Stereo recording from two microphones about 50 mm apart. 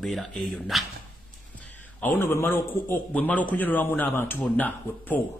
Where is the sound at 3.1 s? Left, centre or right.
Left.